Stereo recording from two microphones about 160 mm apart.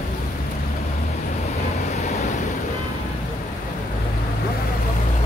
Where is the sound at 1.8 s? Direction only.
50° left (ahead or behind).